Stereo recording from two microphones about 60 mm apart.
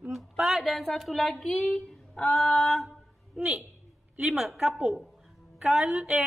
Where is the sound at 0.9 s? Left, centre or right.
Centre.